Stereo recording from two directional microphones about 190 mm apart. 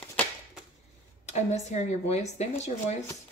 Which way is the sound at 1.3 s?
35° left (ahead or behind).